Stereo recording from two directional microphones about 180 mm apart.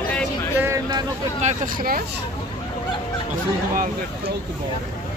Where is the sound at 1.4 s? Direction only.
45° right (ahead or behind).